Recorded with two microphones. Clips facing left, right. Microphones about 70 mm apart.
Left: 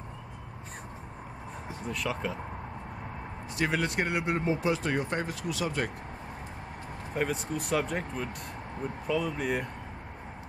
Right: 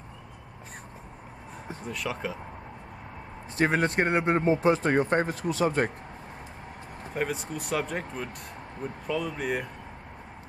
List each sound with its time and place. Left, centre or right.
1.9 s speech: centre
3.5 s speech: right
7.2 s speech: centre